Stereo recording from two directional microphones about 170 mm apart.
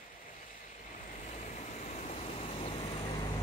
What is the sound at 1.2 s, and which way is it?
Vehicle, 45° left (ahead or behind).